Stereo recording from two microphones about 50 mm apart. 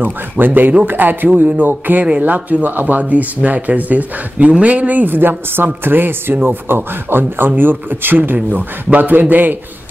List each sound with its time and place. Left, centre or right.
0.0 s a man's voice: right